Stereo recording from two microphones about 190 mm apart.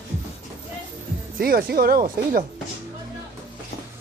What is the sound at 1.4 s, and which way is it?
Speech, 50° right (ahead or behind).